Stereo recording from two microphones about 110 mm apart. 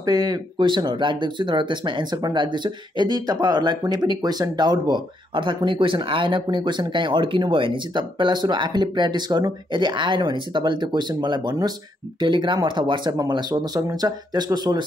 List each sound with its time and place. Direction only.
0.0 s speech: 35° right (ahead or behind)